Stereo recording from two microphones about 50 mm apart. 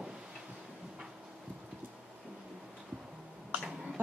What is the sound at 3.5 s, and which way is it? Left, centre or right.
Cough, right.